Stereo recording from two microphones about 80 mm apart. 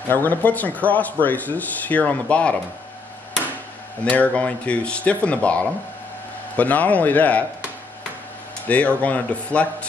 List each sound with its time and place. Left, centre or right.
0.1 s speech: left
4.0 s speech: centre
8.6 s speech: centre